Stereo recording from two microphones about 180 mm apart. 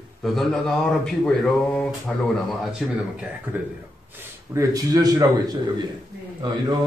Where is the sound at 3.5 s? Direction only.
10° right (ahead or behind).